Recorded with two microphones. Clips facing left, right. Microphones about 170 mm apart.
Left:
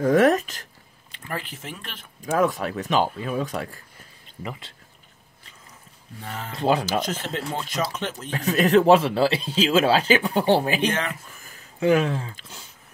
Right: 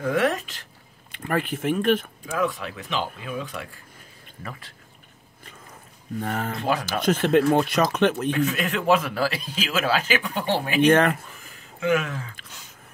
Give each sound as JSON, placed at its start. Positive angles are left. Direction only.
{"t": 0.0, "sound": "speech", "side_deg": 45}
{"t": 1.2, "sound": "speech", "side_deg": -55}
{"t": 2.3, "sound": "speech", "side_deg": 45}
{"t": 4.4, "sound": "speech", "side_deg": 20}
{"t": 6.1, "sound": "speech", "side_deg": -55}
{"t": 6.6, "sound": "speech", "side_deg": 30}
{"t": 7.1, "sound": "speech", "side_deg": -60}
{"t": 8.3, "sound": "speech", "side_deg": 35}
{"t": 10.9, "sound": "speech", "side_deg": -55}
{"t": 11.8, "sound": "speech", "side_deg": 35}